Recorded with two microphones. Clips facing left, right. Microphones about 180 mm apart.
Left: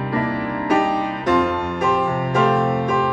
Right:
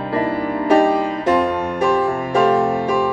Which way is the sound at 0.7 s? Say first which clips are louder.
Right 5 dB; 30° right (ahead or behind).